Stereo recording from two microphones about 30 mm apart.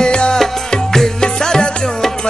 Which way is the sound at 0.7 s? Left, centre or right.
Centre.